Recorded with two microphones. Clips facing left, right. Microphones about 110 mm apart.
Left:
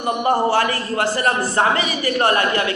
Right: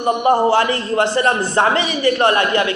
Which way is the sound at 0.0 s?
20° right (ahead or behind).